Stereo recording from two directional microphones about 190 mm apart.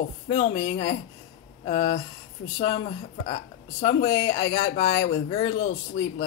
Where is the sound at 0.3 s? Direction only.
25° left (ahead or behind).